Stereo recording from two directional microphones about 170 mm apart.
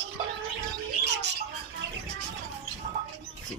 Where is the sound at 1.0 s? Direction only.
90° right.